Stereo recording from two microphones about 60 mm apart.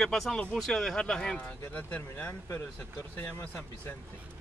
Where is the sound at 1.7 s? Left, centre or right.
Left.